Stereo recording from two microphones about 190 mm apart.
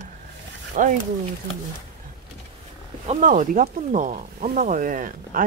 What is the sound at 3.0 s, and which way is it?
Speech, 40° right (ahead or behind).